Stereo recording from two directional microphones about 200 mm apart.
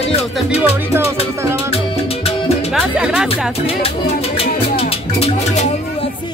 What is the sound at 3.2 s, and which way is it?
Speech, 30° left (ahead or behind).